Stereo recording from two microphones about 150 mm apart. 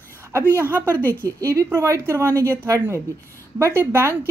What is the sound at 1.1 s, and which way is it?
A woman's voice, 15° right (ahead or behind).